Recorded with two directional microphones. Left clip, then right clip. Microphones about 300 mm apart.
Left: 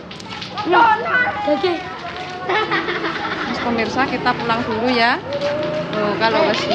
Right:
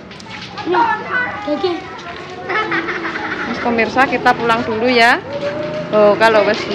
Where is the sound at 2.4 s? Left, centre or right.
Left.